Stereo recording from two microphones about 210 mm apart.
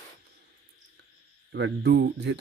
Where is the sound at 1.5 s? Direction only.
55° right (ahead or behind).